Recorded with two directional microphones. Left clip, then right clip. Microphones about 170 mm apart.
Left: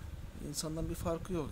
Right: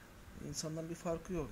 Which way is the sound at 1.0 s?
25° left (ahead or behind).